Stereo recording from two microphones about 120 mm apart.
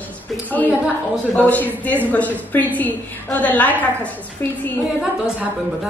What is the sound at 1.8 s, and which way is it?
A woman's voice, 15° left (ahead or behind).